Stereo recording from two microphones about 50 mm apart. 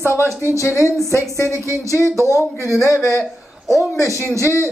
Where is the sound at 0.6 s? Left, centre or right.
Left.